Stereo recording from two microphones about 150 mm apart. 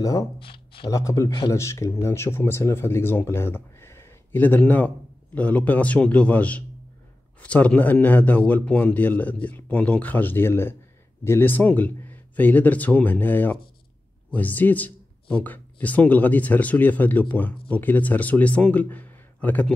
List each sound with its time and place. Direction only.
0.0 s speech: 20° left (ahead or behind)
0.4 s speech: 35° left (ahead or behind)
0.9 s speech: 20° left (ahead or behind)